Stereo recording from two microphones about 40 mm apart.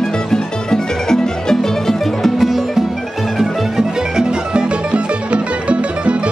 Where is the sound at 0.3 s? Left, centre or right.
Centre.